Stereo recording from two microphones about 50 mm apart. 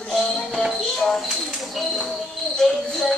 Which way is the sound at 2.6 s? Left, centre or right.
Centre.